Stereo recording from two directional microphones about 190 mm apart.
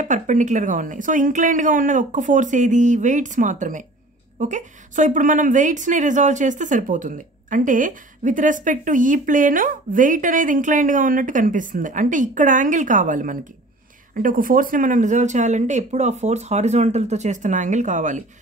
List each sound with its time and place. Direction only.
0.0 s a woman's voice: 40° right (ahead or behind)